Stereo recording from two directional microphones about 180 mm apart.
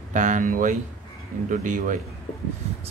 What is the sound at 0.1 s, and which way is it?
Speech, 45° right (ahead or behind).